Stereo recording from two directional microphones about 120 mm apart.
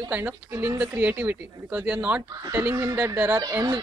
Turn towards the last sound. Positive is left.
turn(degrees=-30)  # may be behind; listen again after turning